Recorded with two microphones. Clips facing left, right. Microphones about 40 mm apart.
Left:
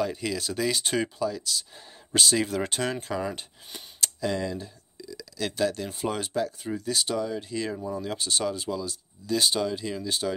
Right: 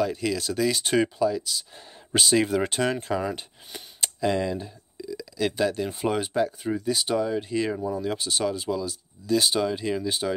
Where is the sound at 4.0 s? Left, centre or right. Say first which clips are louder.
Right 4 dB; centre.